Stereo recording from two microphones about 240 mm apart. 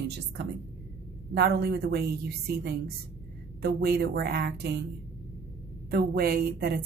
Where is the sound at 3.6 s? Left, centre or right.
Right.